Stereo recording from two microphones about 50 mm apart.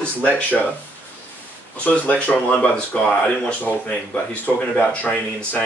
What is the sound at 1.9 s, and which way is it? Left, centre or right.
Speech, left.